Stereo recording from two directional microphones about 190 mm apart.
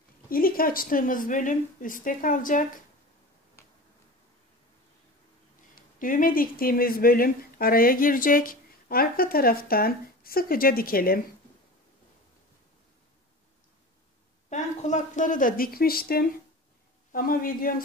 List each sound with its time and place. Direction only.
0.3 s speech: 50° left (ahead or behind)
3.6 s finger snapping: 15° left (ahead or behind)
5.8 s speech: 45° left (ahead or behind)
14.5 s speech: 40° left (ahead or behind)